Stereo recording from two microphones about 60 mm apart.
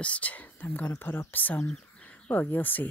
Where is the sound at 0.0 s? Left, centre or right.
Left.